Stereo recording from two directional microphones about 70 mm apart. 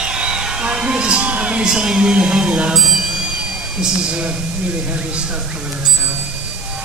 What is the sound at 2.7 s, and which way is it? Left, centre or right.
Music, centre.